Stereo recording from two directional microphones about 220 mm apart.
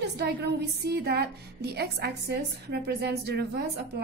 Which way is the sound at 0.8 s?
45° right (ahead or behind).